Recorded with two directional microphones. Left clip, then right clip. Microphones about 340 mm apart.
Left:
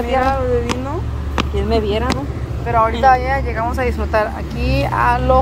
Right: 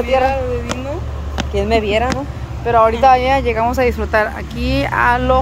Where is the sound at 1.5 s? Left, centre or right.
Right.